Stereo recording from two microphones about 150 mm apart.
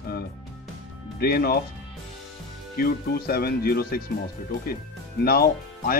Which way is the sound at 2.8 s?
90° left.